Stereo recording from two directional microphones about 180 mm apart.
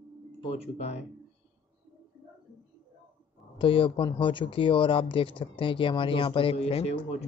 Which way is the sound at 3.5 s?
30° left (ahead or behind).